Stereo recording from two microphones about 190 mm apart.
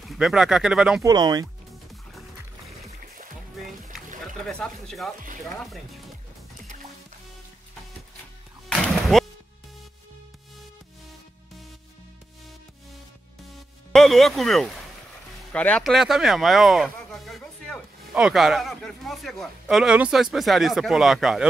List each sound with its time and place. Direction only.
0.0 s speech: centre (ahead or behind)
1.0 s speech: 20° right (ahead or behind)
4.5 s speech: 5° left (ahead or behind)
8.6 s music: 5° left (ahead or behind)
13.9 s speech: centre (ahead or behind)